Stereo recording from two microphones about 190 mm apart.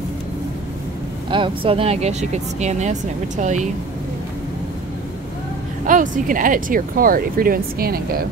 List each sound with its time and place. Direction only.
1.3 s speech: 25° right (ahead or behind)
5.9 s speech: 45° right (ahead or behind)